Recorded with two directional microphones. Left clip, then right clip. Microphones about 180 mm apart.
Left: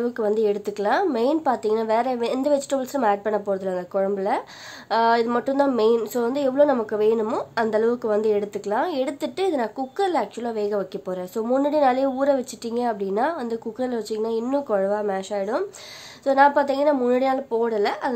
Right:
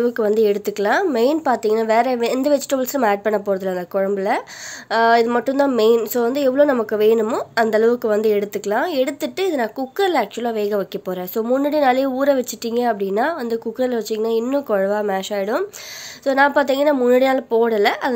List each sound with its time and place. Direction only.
0.0 s speech: 15° right (ahead or behind)